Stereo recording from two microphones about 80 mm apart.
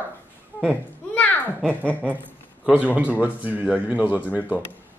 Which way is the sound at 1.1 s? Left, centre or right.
Left.